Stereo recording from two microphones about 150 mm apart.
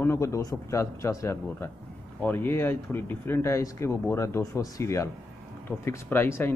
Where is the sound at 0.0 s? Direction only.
20° left (ahead or behind).